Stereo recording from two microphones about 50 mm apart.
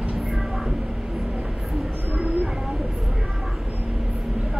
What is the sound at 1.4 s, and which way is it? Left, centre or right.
Train, centre.